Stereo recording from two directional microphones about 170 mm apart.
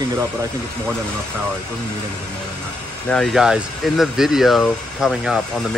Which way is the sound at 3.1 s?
Centre (ahead or behind).